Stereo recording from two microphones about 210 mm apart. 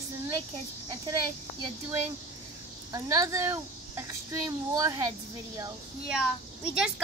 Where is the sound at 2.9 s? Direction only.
15° right (ahead or behind).